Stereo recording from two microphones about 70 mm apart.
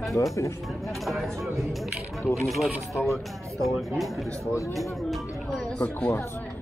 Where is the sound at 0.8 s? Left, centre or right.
Centre.